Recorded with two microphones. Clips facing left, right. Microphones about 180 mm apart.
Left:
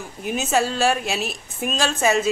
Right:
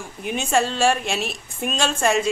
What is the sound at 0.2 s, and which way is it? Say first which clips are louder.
A woman's voice: even; centre (ahead or behind).